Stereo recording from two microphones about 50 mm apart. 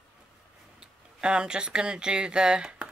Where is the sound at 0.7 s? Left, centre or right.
Centre.